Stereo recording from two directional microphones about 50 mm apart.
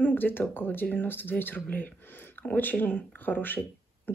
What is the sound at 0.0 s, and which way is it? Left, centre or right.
Speech, left.